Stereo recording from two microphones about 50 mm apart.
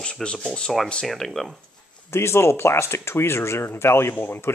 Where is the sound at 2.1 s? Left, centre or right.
Left.